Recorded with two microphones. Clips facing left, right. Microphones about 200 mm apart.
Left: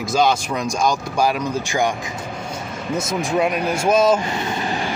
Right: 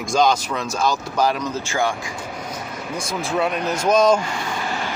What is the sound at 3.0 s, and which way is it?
Speech, 20° left (ahead or behind).